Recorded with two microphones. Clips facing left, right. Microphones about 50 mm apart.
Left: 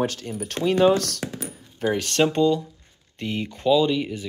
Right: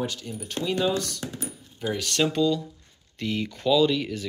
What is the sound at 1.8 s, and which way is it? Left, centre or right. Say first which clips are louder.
Speech: left 4 dB; left.